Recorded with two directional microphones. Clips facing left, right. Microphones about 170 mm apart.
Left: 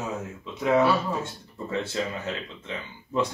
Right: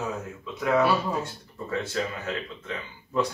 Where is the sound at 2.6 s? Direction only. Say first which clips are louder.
Even; 25° left (ahead or behind).